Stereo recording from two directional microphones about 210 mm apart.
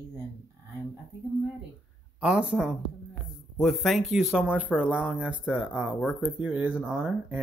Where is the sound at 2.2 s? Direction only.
5° right (ahead or behind).